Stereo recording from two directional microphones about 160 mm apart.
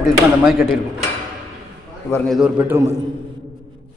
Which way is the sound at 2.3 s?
5° right (ahead or behind).